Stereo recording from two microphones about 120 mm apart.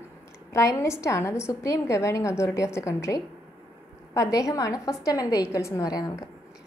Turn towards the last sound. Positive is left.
turn(degrees=30)  # may be behind; listen again after turning